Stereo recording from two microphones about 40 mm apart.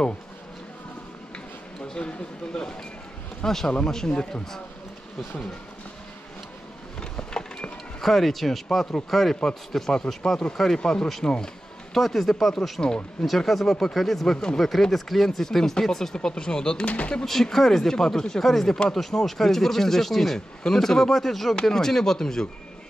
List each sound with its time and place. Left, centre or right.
2.0 s speech: left
3.4 s speech: centre
7.0 s a sound: centre
8.0 s speech: centre
11.9 s speech: centre
14.6 s speech: centre; by 17.2 s left
17.2 s speech: centre